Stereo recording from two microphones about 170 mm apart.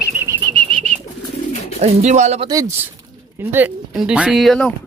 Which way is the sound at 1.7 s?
40° right (ahead or behind).